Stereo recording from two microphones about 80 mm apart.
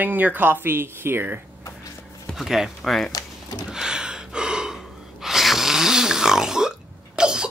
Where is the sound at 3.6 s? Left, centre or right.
Centre.